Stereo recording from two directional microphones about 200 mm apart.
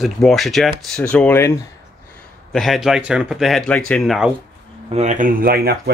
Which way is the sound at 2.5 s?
Centre (ahead or behind).